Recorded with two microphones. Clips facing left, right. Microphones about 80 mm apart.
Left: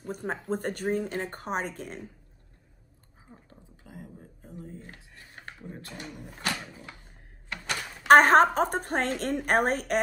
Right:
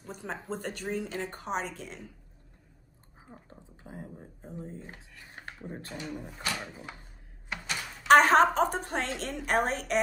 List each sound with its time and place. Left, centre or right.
0.0 s a woman's voice: left
3.3 s speech: right
5.7 s a sound: right
7.6 s a woman's voice: left